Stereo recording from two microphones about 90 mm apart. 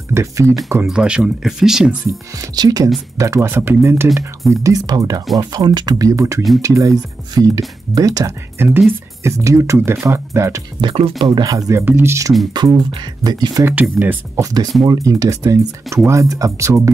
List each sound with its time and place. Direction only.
0.1 s speech: 30° right (ahead or behind)
0.8 s speech: 10° right (ahead or behind)
2.5 s speech: 45° right (ahead or behind)
3.2 s speech: 35° right (ahead or behind)
3.4 s speech: 25° right (ahead or behind); by 8.3 s 40° right (ahead or behind)
8.5 s speech: 25° right (ahead or behind)
10.8 s speech: 80° right
11.4 s speech: 40° right (ahead or behind)
13.2 s speech: 50° right (ahead or behind)
13.7 s speech: 20° right (ahead or behind)
14.4 s speech: 45° right (ahead or behind)